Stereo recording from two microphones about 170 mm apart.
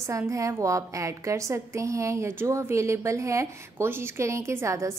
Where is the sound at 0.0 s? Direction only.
20° right (ahead or behind).